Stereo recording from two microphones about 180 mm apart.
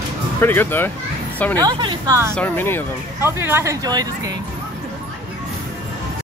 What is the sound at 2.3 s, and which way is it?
Speech, 10° left (ahead or behind).